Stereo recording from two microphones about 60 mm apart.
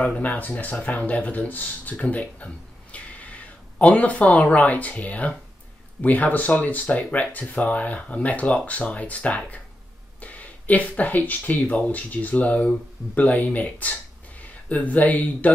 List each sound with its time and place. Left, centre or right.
0.2 s speech: left